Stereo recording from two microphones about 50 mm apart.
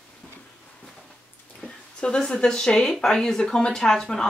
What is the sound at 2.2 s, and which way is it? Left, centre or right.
Speech, centre.